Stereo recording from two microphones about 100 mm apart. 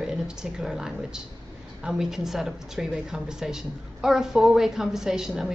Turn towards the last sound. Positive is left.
turn(degrees=-5)  # may be behind; listen again after turning